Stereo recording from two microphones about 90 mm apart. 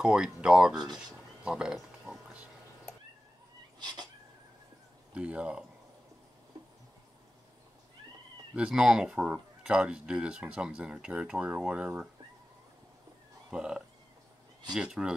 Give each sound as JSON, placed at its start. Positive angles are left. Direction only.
{"t": 0.0, "sound": "speech", "side_deg": -10}
{"t": 0.9, "sound": "a sound", "side_deg": -5}
{"t": 3.8, "sound": "cat", "side_deg": -50}
{"t": 5.1, "sound": "speech", "side_deg": -10}
{"t": 8.5, "sound": "speech", "side_deg": -10}
{"t": 13.5, "sound": "speech", "side_deg": -10}